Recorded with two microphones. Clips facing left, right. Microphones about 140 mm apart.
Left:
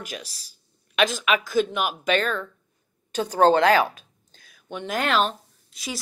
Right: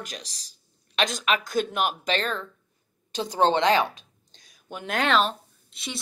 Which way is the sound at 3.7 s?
10° left (ahead or behind).